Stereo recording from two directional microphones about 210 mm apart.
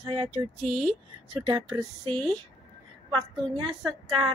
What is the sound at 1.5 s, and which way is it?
Speech, 20° right (ahead or behind).